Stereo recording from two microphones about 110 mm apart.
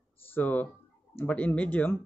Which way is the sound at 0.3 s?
15° left (ahead or behind).